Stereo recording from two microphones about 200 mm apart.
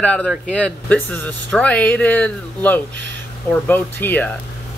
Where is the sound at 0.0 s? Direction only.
5° left (ahead or behind).